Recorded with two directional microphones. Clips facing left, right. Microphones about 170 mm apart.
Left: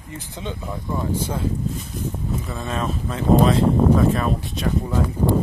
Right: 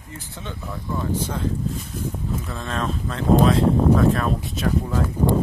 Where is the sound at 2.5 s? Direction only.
5° left (ahead or behind).